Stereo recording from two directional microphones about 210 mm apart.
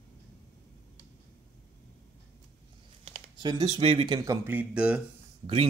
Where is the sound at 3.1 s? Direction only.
20° right (ahead or behind).